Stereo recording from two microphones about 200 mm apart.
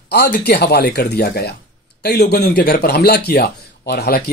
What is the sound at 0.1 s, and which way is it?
A man's voice, 55° left (ahead or behind).